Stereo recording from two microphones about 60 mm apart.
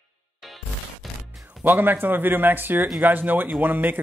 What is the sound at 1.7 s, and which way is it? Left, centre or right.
Speech, right.